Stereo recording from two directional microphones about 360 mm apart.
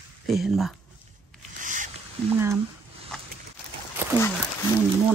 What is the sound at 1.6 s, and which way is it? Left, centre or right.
Zipper, right.